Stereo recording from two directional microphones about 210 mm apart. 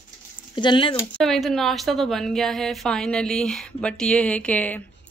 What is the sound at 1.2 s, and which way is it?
A woman's voice, centre (ahead or behind).